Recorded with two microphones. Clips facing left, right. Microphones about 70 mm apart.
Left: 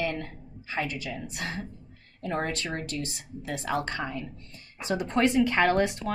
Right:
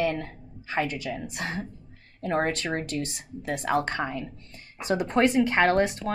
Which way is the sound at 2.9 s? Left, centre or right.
Right.